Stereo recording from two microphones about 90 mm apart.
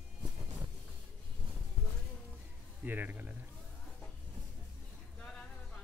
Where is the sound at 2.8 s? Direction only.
20° right (ahead or behind).